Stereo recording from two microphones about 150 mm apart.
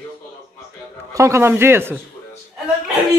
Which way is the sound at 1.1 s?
20° right (ahead or behind).